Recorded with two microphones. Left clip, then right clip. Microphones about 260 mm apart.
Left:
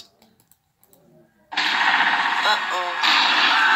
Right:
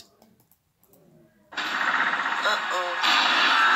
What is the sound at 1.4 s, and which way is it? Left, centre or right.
Artillery fire, centre.